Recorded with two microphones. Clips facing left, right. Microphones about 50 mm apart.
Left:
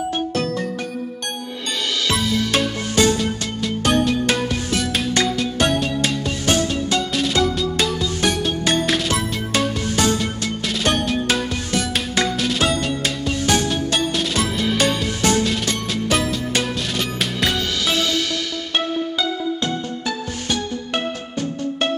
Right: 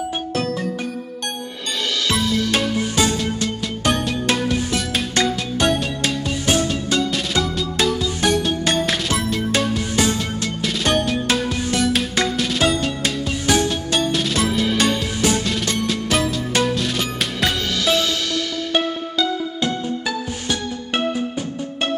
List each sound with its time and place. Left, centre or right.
0.3 s music: centre
2.0 s music: centre
20.4 s music: centre